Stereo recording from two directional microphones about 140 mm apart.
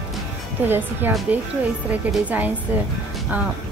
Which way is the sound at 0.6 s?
15° right (ahead or behind).